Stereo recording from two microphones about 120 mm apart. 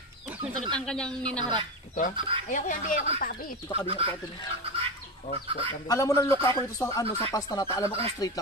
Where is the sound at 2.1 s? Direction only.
45° right (ahead or behind).